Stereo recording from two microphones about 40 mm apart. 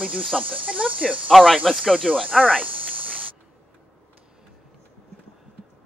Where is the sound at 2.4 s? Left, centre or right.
Right.